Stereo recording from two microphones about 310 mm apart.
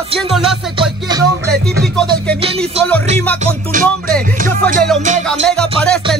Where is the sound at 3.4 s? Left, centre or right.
Right.